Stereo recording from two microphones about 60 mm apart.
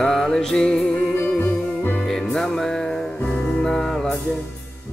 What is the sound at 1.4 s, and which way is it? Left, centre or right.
Music, left.